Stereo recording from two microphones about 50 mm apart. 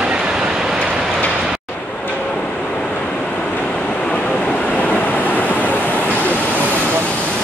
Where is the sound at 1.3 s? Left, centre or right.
Centre.